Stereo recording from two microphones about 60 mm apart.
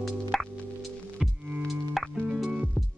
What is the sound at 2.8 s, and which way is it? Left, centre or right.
Music, left.